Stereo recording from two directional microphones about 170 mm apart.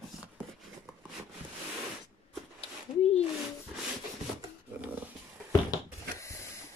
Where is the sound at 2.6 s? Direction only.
35° left (ahead or behind).